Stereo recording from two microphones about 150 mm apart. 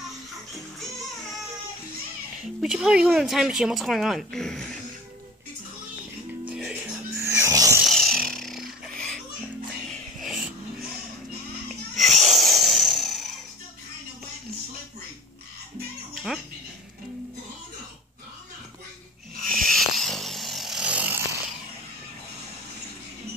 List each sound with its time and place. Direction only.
2.6 s speech: 5° right (ahead or behind)
6.4 s music: 5° right (ahead or behind)
7.2 s music: 20° right (ahead or behind)
7.9 s a sound: 5° left (ahead or behind)
9.8 s music: centre (ahead or behind)
11.9 s music: centre (ahead or behind)
19.5 s chainsaw: centre (ahead or behind)